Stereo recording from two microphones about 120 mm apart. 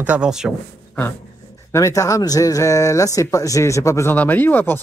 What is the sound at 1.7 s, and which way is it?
Speech, 25° left (ahead or behind).